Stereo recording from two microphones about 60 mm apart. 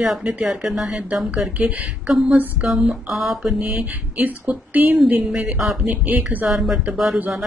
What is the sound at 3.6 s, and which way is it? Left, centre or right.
Speech, centre.